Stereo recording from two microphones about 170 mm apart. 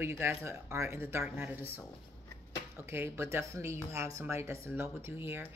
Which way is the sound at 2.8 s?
15° right (ahead or behind).